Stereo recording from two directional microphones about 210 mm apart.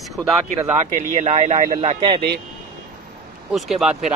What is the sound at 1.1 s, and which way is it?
Speech, 30° right (ahead or behind).